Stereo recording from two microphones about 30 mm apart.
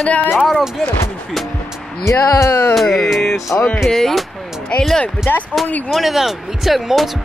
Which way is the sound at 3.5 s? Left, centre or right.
Left.